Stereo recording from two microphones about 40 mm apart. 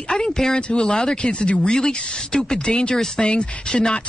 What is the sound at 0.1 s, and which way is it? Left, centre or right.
Speech, centre.